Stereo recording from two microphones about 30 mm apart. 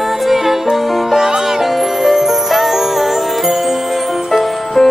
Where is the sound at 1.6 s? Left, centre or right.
Centre.